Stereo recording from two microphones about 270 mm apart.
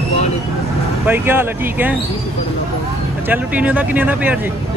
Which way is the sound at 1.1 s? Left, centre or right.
Centre.